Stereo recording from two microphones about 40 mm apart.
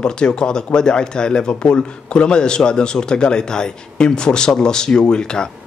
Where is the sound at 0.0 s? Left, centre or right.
Left.